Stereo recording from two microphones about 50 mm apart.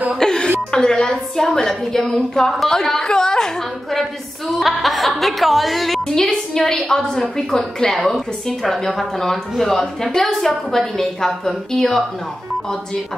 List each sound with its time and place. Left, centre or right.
0.2 s a sound: centre
0.7 s a woman's voice: centre
1.7 s a woman's voice: centre